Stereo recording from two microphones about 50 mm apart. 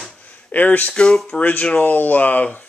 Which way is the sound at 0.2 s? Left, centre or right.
Left.